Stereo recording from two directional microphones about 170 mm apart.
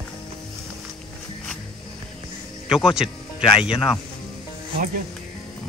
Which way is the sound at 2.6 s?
5° right (ahead or behind).